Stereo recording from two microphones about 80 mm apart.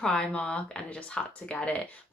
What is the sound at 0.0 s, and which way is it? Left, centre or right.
Speech, centre.